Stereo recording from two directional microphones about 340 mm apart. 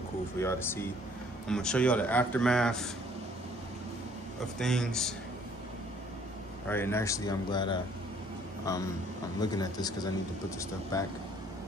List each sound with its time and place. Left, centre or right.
0.4 s speech: centre
4.6 s speech: centre
6.7 s speech: centre